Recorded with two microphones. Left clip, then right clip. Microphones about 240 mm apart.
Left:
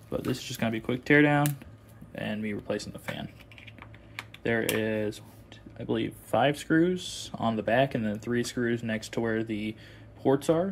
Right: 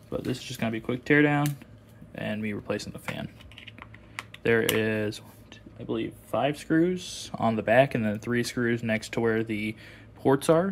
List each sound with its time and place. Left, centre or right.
0.1 s speech: centre
5.8 s speech: centre